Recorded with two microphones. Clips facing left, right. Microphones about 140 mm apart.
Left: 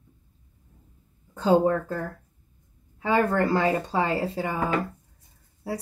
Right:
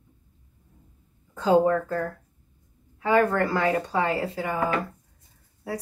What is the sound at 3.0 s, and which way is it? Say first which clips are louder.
Speech: right 1 dB; 30° left (ahead or behind).